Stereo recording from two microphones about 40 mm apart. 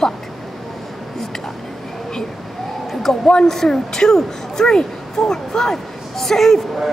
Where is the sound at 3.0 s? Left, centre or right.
Centre.